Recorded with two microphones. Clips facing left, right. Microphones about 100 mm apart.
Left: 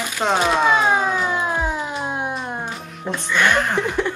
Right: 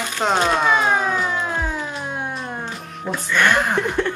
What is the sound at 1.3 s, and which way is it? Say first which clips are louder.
Siren: left 2 dB; 15° left (ahead or behind).